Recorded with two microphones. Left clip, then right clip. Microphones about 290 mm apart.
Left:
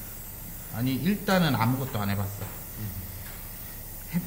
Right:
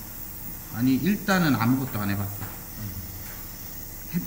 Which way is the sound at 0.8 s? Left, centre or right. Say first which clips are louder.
Right 4 dB; left.